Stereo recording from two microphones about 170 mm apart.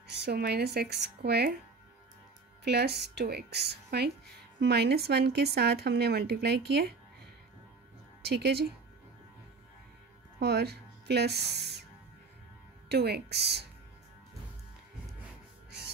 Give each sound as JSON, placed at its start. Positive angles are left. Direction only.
{"t": 0.0, "sound": "speech", "side_deg": -75}
{"t": 2.6, "sound": "speech", "side_deg": -70}
{"t": 8.2, "sound": "speech", "side_deg": -70}
{"t": 10.4, "sound": "speech", "side_deg": -75}
{"t": 12.8, "sound": "speech", "side_deg": -75}